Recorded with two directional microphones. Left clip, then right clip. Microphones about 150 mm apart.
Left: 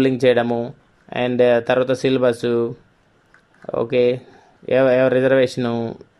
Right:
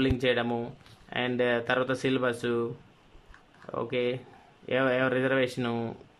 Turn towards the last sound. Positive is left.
turn(degrees=20)  # may be behind; listen again after turning